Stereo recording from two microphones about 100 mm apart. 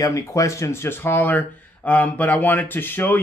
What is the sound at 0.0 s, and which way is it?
Speech, 30° left (ahead or behind).